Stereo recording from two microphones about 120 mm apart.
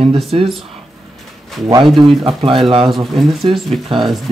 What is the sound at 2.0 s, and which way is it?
Speech, 45° right (ahead or behind).